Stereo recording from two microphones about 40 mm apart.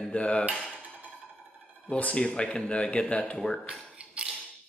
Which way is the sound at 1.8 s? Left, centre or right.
Left.